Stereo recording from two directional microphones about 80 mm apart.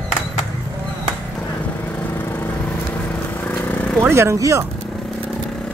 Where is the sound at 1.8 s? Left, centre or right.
Left.